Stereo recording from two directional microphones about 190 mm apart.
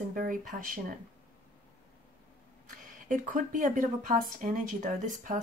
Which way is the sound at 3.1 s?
45° right (ahead or behind).